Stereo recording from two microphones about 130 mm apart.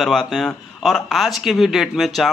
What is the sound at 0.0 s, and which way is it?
Speech, centre (ahead or behind).